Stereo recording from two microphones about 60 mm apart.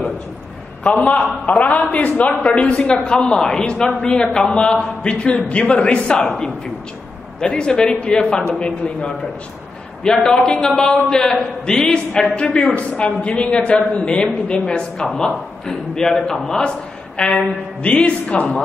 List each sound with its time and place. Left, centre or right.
0.8 s a man's voice: left
7.3 s a man's voice: centre